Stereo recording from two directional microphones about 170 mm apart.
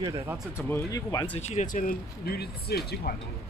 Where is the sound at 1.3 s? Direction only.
45° left (ahead or behind); by 3.1 s 70° left (ahead or behind).